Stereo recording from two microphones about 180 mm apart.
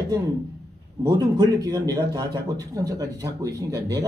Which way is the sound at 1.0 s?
25° right (ahead or behind).